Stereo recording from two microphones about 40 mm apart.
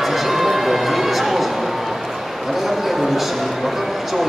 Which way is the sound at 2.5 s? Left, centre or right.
Centre.